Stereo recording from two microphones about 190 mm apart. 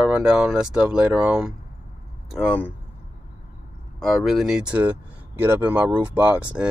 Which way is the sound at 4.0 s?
Centre (ahead or behind).